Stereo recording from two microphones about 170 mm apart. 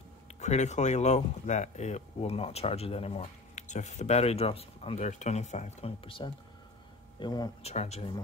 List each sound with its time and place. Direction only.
0.4 s speech: 40° left (ahead or behind); by 7.5 s 25° left (ahead or behind)
7.6 s speech: 40° left (ahead or behind)